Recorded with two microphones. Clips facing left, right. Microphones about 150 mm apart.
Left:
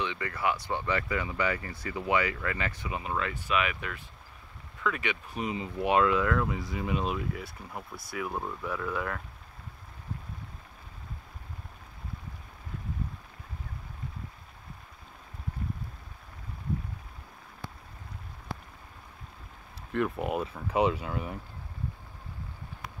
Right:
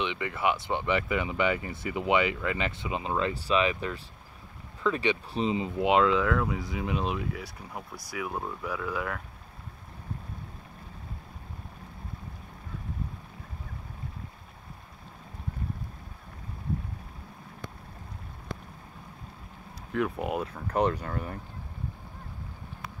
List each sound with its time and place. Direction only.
0.0 s speech: 20° right (ahead or behind)
6.2 s speech: centre (ahead or behind)
19.9 s speech: centre (ahead or behind)